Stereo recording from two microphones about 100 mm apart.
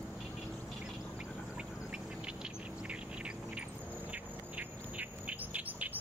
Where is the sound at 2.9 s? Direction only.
10° right (ahead or behind).